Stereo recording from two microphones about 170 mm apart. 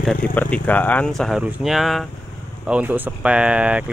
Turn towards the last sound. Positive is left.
turn(degrees=-5)  # may be behind; listen again after turning